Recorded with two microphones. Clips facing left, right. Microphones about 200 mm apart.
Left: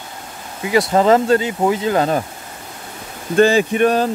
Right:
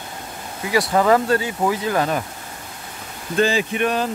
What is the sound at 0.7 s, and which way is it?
Speech, 25° left (ahead or behind).